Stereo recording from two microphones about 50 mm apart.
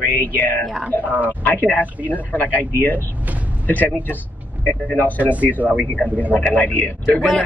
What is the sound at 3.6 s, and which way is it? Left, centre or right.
Speech, left.